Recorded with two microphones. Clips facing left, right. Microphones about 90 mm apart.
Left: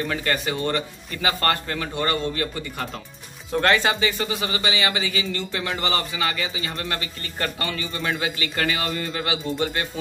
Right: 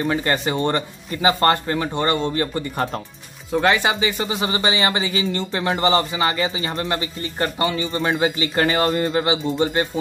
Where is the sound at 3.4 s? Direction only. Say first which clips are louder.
Right 2 dB; 10° right (ahead or behind).